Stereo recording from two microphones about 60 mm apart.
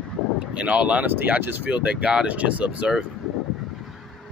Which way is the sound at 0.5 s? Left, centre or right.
Right.